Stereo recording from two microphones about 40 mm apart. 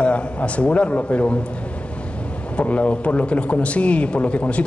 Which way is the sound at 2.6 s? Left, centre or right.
Left.